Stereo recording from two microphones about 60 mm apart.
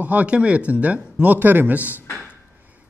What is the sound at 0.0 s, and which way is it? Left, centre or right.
A man's voice, right.